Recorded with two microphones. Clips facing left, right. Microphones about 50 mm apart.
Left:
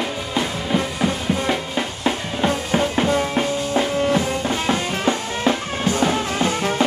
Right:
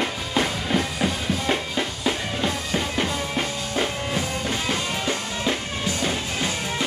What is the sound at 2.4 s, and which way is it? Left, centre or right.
Music, left.